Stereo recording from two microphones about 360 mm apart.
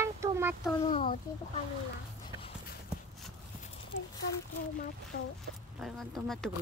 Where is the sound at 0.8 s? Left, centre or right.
Centre.